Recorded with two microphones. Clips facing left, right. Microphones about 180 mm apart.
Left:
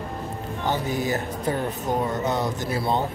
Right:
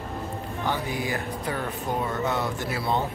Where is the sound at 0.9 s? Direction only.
40° left (ahead or behind).